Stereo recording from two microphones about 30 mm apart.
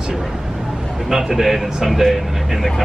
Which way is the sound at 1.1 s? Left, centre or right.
Centre.